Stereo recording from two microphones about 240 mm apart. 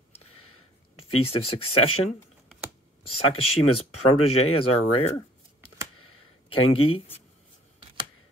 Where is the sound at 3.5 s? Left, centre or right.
Left.